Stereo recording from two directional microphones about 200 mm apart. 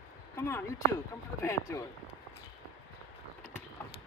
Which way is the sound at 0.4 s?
10° left (ahead or behind).